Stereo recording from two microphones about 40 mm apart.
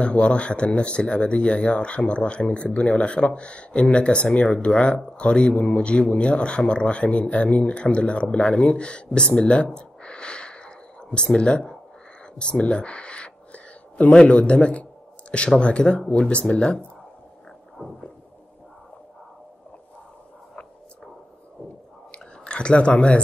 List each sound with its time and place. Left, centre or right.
0.0 s speech: left
9.8 s gasp: left
12.4 s speech: left
22.1 s a sound: left